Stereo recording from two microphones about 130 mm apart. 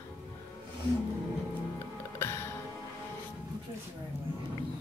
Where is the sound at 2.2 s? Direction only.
20° left (ahead or behind).